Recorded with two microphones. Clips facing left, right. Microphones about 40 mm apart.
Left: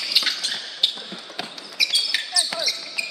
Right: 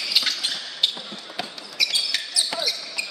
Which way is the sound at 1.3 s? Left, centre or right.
Centre.